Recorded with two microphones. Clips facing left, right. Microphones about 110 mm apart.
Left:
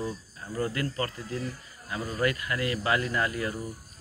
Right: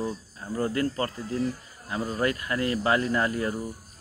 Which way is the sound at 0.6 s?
35° right (ahead or behind).